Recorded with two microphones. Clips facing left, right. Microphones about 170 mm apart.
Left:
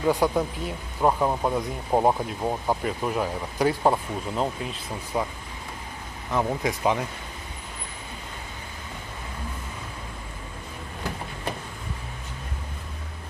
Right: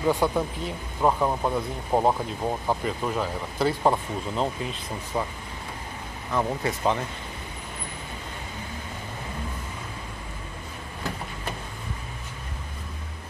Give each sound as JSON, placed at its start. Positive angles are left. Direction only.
{"t": 0.1, "sound": "speech", "side_deg": 10}
{"t": 6.3, "sound": "speech", "side_deg": 10}